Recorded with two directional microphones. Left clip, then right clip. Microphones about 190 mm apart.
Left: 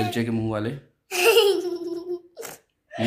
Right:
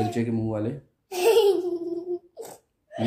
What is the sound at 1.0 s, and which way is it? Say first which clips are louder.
Laughter: left 2 dB; 20° right (ahead or behind).